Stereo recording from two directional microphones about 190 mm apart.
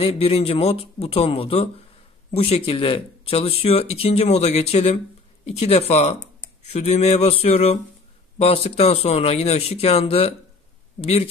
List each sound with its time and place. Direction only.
0.0 s speech: 30° left (ahead or behind)